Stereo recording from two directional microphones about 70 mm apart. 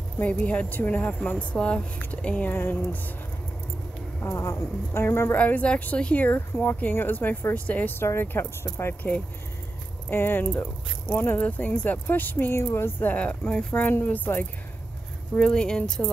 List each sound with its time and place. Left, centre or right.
0.2 s speech: left
2.5 s speech: left
4.4 s speech: left
5.0 s a woman's voice: left
5.3 s speech: left
6.2 s speech: left
8.0 s a woman's voice: left
9.0 s a woman's voice: left
13.1 s speech: centre
13.8 s speech: left
15.3 s speech: centre